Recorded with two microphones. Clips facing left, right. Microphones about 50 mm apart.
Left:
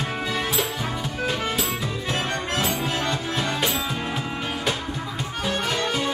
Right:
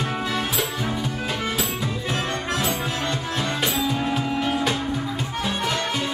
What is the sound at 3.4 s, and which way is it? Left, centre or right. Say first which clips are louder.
Music: right 3 dB; centre.